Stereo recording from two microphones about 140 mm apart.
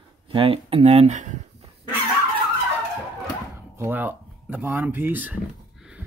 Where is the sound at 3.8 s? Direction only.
15° right (ahead or behind).